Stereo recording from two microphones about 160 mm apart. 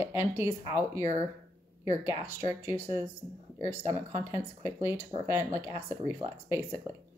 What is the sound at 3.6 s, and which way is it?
A woman's voice, 20° right (ahead or behind).